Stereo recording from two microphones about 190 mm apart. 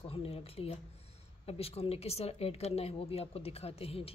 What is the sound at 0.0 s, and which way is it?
Speech, 30° left (ahead or behind).